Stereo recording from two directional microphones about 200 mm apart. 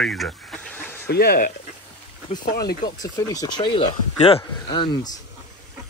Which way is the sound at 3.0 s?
20° left (ahead or behind).